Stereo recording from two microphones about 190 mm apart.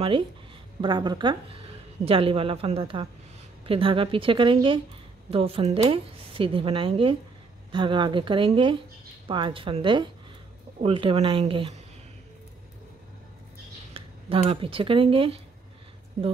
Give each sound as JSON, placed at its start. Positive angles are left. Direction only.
{"t": 0.7, "sound": "a woman's voice", "side_deg": -25}
{"t": 13.9, "sound": "speech", "side_deg": -30}